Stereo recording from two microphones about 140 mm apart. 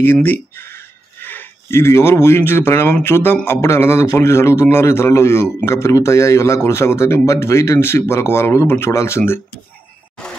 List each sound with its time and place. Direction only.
0.0 s speech: 15° left (ahead or behind)